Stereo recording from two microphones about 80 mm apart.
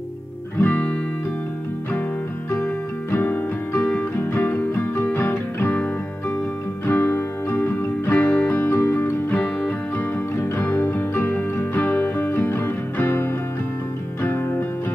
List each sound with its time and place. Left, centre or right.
0.6 s music: left
2.6 s music: left
6.9 s music: left
9.3 s music: centre